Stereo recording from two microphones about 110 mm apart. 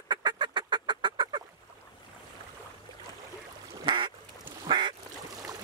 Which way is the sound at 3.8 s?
50° right (ahead or behind).